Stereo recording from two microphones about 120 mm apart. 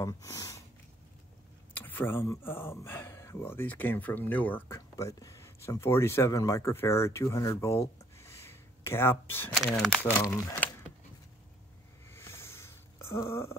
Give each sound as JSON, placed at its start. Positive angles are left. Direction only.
{"t": 0.0, "sound": "speech", "side_deg": 25}
{"t": 1.7, "sound": "speech", "side_deg": 15}
{"t": 9.7, "sound": "speech", "side_deg": 5}
{"t": 12.1, "sound": "a sound", "side_deg": 20}